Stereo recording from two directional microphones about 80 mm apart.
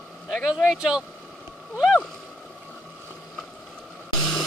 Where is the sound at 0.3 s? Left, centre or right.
Centre.